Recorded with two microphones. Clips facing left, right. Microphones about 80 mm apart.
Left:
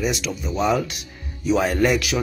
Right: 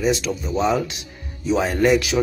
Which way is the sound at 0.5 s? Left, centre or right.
Right.